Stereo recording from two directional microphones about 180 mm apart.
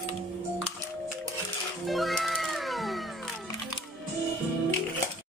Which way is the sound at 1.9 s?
Centre (ahead or behind).